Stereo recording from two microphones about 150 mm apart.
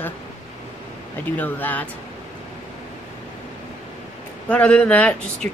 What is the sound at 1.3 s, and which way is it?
Speech, 10° left (ahead or behind).